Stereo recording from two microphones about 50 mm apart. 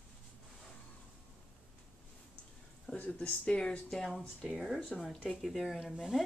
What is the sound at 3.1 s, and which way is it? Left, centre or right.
Speech, left.